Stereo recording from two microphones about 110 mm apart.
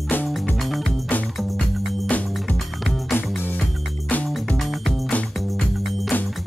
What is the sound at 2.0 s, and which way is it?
Music, 15° left (ahead or behind).